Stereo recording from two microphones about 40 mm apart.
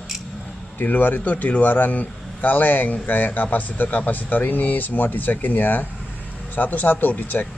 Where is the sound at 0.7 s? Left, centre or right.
Left.